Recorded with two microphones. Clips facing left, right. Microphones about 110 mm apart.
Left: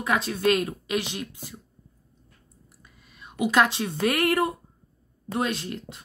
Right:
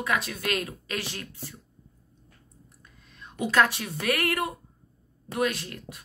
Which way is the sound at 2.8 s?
5° left (ahead or behind).